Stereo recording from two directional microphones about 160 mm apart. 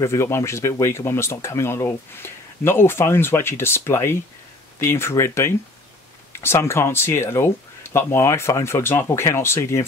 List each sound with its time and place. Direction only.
0.0 s speech: 15° left (ahead or behind)